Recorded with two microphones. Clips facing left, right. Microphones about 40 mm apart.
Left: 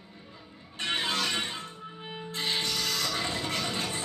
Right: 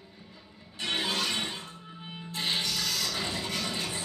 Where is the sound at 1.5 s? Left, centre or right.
Left.